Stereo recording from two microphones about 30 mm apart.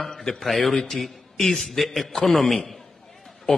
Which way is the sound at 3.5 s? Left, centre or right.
Left.